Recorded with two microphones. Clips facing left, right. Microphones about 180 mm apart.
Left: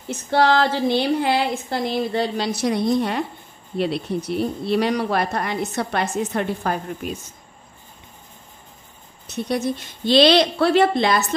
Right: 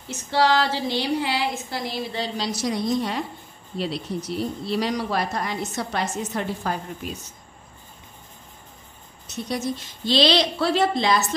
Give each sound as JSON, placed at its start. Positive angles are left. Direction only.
{"t": 0.1, "sound": "a woman's voice", "side_deg": 55}
{"t": 9.3, "sound": "a woman's voice", "side_deg": 60}